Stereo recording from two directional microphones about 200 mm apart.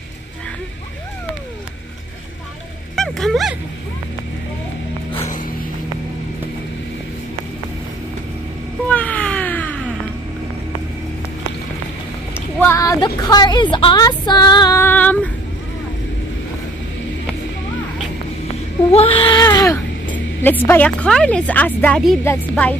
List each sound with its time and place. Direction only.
3.0 s speech: centre (ahead or behind)
8.8 s a sound: 5° left (ahead or behind)
12.5 s a woman's voice: 15° left (ahead or behind)
18.9 s baby cry: 30° left (ahead or behind)
20.6 s speech: 10° left (ahead or behind)